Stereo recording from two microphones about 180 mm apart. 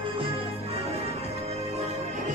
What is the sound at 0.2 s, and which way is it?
Music, 30° right (ahead or behind).